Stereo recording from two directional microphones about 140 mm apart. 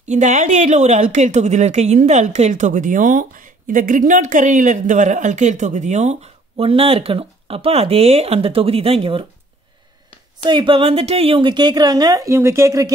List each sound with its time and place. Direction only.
0.0 s a woman's voice: 60° right (ahead or behind); by 9.2 s 45° right (ahead or behind)
10.4 s a woman's voice: 35° right (ahead or behind)